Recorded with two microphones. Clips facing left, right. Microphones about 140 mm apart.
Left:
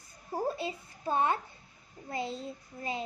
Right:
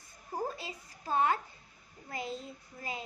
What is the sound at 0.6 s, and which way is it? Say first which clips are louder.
A child's voice: left 8 dB; 25° left (ahead or behind).